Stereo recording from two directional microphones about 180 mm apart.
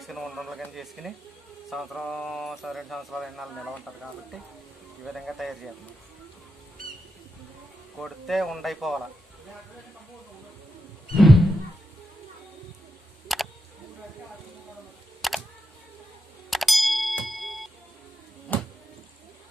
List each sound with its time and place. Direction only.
0.0 s speech: centre (ahead or behind)
8.0 s speech: centre (ahead or behind)
11.1 s a sound: centre (ahead or behind)
13.3 s a sound: centre (ahead or behind)
15.2 s computer keyboard: centre (ahead or behind)
16.4 s ding: centre (ahead or behind)
18.5 s music: 10° left (ahead or behind)